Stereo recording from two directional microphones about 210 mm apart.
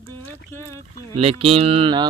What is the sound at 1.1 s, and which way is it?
Speech, 30° right (ahead or behind).